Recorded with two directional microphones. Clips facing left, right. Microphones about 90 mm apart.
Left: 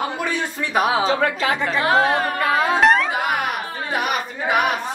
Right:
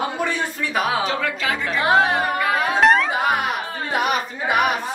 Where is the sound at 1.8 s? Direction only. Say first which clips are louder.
Right 1 dB; 20° right (ahead or behind).